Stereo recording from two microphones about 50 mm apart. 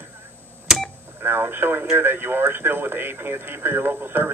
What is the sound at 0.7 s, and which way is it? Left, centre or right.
Telephone dialing, centre.